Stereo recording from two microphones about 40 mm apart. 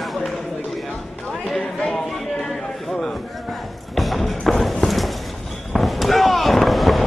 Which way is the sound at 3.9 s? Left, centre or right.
Centre.